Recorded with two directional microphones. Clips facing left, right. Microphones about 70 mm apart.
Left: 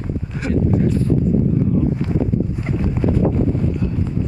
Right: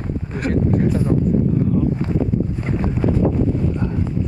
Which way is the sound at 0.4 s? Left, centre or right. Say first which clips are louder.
Even; right.